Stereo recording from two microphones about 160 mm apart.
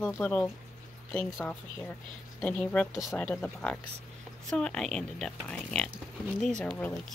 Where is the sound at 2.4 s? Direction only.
5° left (ahead or behind).